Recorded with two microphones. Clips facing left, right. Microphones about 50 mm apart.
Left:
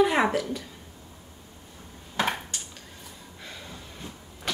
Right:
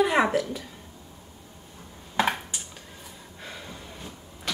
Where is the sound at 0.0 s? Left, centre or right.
Centre.